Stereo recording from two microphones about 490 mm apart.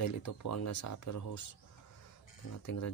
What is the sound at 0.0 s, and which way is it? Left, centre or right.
Speech, left.